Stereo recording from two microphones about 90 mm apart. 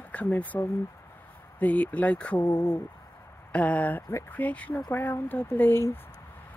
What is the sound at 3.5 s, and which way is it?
Speech, 15° left (ahead or behind).